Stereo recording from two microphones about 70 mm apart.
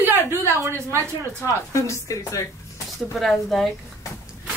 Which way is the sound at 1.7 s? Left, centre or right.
Left.